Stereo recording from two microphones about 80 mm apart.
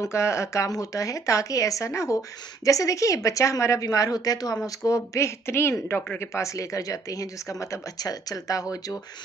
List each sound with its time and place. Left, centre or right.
0.0 s a woman's voice: left
6.3 s a woman's voice: left